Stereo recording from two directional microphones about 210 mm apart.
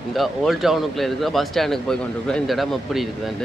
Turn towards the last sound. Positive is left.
turn(degrees=0)  # may be behind; listen again after turning